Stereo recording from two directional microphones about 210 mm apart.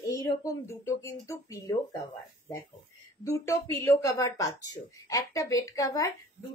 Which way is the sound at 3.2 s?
15° left (ahead or behind).